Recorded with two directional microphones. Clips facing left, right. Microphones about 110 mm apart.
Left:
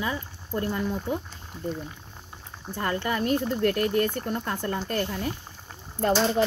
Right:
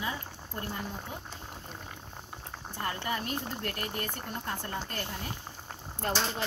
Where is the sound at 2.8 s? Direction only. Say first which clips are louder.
Left 7 dB; 65° left (ahead or behind).